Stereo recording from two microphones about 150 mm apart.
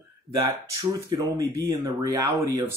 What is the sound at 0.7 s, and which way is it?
Speech, 20° right (ahead or behind).